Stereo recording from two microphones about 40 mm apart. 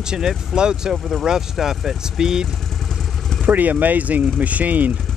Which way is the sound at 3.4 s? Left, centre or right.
Right.